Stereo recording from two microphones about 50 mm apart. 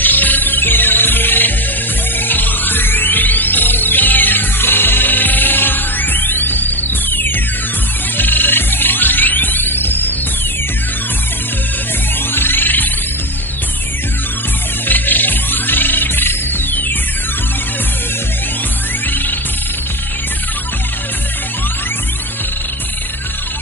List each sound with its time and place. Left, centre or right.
0.0 s music: left
12.4 s music: left
14.9 s music: left